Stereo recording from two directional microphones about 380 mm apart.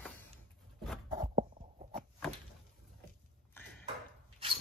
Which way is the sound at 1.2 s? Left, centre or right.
Centre.